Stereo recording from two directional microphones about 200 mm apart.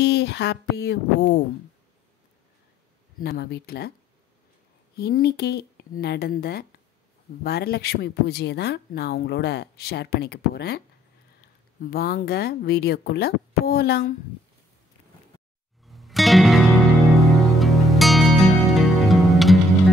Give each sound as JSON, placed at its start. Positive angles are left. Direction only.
{"t": 0.0, "sound": "speech", "side_deg": 55}
{"t": 3.2, "sound": "speech", "side_deg": 55}
{"t": 4.9, "sound": "speech", "side_deg": 55}
{"t": 11.8, "sound": "speech", "side_deg": 50}
{"t": 15.9, "sound": "music", "side_deg": 0}